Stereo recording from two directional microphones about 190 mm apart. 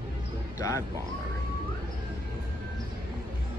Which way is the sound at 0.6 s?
15° left (ahead or behind).